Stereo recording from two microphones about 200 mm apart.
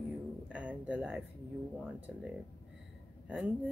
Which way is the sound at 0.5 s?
5° right (ahead or behind).